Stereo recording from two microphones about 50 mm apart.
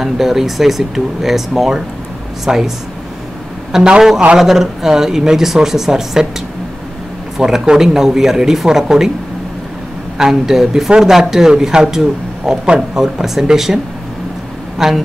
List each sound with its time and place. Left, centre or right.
0.0 s speech: centre
3.7 s speech: centre
7.3 s speech: centre
10.1 s speech: centre
12.6 s a man's voice: centre
13.0 s speech: centre
14.8 s speech: centre